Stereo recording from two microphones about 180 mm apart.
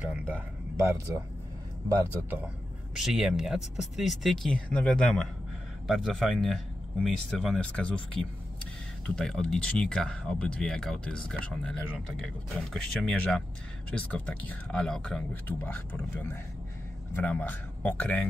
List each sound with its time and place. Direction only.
0.1 s speech: 15° right (ahead or behind); by 18.2 s 10° left (ahead or behind)